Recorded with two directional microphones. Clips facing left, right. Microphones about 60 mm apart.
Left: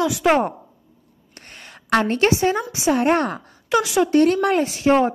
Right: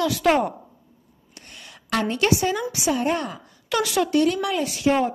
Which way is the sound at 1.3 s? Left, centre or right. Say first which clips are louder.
Left 2 dB; left.